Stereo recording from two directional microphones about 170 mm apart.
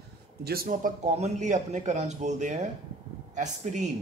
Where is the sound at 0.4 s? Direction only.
65° right (ahead or behind); by 3.8 s 45° right (ahead or behind).